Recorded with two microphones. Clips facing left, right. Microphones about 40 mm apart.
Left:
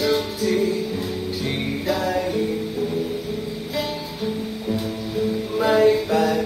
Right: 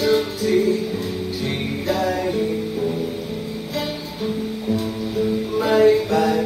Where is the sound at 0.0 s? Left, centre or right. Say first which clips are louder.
Right 2 dB; centre.